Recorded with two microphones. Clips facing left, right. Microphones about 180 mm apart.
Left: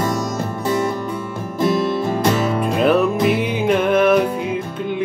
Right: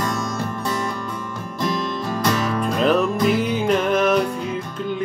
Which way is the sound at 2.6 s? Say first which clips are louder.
Left 2 dB; 5° left (ahead or behind).